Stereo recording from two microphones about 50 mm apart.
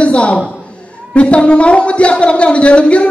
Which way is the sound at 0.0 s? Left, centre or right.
Left.